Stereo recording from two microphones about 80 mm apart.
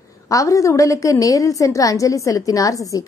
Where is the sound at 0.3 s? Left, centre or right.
Left.